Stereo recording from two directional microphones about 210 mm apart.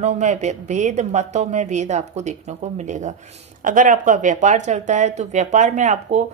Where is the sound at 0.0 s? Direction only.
35° right (ahead or behind).